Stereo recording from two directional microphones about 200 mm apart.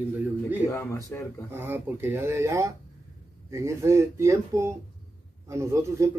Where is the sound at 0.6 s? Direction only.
15° left (ahead or behind).